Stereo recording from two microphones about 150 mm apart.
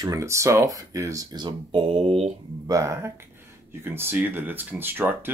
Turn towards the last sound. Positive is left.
turn(degrees=-15)  # may be behind; listen again after turning